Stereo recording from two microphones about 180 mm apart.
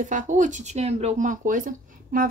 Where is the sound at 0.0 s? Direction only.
45° right (ahead or behind).